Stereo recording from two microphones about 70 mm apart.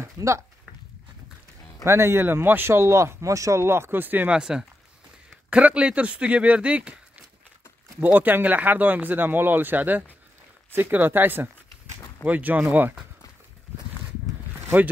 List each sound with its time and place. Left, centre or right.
0.0 s speech: right
1.9 s speech: right
3.6 s speech: right
4.3 s speech: centre
8.0 s speech: right
14.8 s speech: right